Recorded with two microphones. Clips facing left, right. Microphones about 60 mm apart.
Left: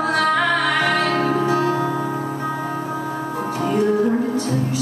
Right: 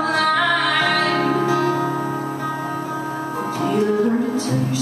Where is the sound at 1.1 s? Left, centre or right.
Right.